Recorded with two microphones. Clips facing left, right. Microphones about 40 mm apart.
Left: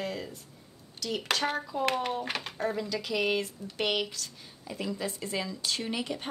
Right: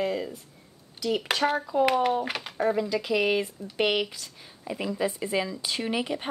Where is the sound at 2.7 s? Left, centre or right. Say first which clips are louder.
Right 7 dB; centre.